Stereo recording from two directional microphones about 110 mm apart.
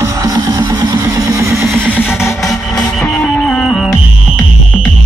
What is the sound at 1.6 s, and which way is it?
Music, 20° right (ahead or behind).